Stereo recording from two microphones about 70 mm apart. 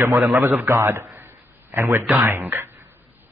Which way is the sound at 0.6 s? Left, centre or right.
Right.